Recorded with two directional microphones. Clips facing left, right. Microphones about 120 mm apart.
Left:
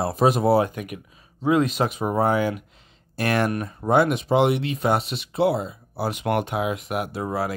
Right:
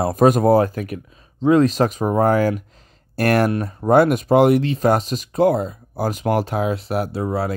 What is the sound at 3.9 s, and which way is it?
Speech, 50° right (ahead or behind).